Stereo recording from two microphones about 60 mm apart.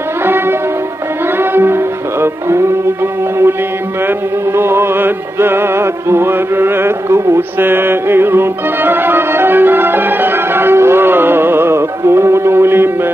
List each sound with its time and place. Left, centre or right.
0.2 s music: right
4.6 s music: right